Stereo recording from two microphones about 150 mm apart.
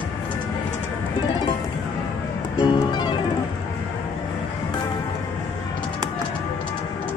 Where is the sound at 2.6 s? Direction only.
30° left (ahead or behind).